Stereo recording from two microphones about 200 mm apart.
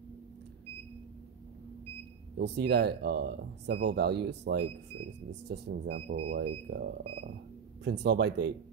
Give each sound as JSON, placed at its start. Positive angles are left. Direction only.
{"t": 2.3, "sound": "speech", "side_deg": -55}